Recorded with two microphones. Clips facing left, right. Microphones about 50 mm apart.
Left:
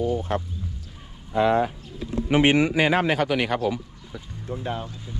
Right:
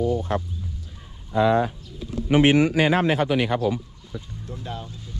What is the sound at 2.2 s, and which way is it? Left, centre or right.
A man's voice, left.